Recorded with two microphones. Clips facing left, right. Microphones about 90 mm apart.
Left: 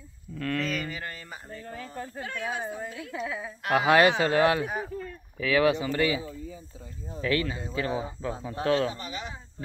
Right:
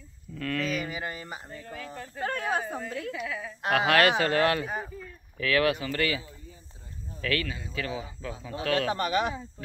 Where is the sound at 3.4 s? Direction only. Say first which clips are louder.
Even; 20° left (ahead or behind).